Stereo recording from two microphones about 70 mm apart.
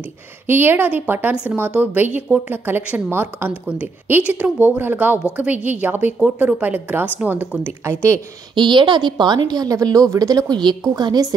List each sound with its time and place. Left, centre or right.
0.5 s a woman's voice: right
1.3 s a woman's voice: centre
7.6 s a woman's voice: right
8.6 s a woman's voice: right